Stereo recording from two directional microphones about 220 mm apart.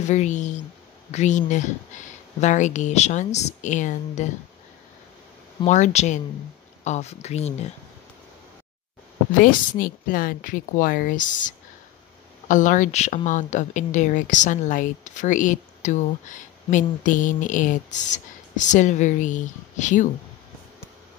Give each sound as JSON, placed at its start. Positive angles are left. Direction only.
{"t": 0.0, "sound": "speech", "side_deg": 35}
{"t": 5.7, "sound": "speech", "side_deg": 35}
{"t": 9.4, "sound": "speech", "side_deg": 40}